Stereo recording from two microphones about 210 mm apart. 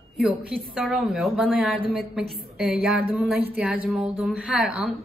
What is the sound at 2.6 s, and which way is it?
A woman's voice, centre (ahead or behind).